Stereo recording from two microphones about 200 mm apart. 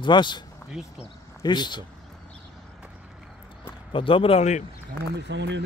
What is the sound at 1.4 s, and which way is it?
Speech, 20° left (ahead or behind).